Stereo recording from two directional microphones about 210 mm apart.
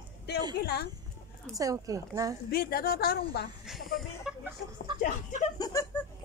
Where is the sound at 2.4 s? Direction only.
45° left (ahead or behind).